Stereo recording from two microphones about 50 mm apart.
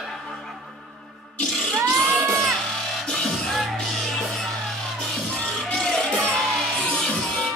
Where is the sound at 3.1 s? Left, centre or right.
Centre.